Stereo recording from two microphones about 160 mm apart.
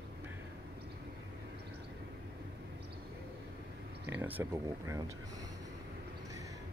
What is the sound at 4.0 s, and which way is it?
Speech, 10° right (ahead or behind).